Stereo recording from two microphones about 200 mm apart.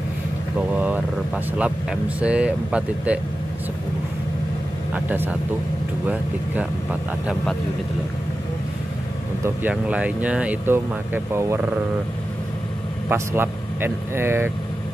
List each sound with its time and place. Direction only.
0.6 s speech: 5° right (ahead or behind)
4.9 s speech: 10° right (ahead or behind)
9.4 s speech: 10° right (ahead or behind)
13.1 s speech: 10° right (ahead or behind)